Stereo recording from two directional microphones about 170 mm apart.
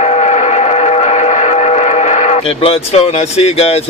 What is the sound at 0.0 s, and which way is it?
Vehicle, 40° left (ahead or behind).